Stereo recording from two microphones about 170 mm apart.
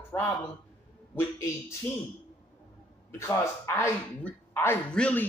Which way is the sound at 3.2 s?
15° left (ahead or behind).